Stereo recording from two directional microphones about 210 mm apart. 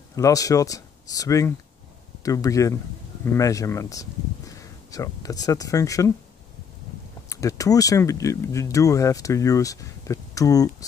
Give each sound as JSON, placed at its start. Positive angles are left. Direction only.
{"t": 0.1, "sound": "speech", "side_deg": 15}
{"t": 7.2, "sound": "speech", "side_deg": 15}